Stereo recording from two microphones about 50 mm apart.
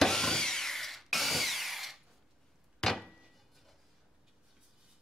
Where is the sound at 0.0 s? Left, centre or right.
Centre.